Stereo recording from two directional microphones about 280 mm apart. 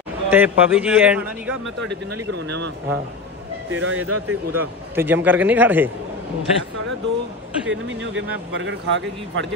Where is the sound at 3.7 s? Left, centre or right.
Right.